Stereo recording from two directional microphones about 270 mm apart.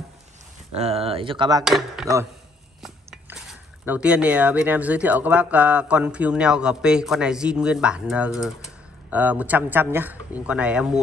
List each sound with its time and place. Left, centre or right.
0.7 s speech: right
1.6 s speech: centre
3.8 s speech: centre